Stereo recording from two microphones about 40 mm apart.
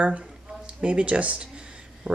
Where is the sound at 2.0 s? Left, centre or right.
Right.